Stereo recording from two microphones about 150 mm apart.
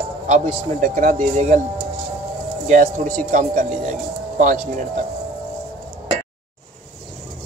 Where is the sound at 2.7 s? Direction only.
60° right (ahead or behind).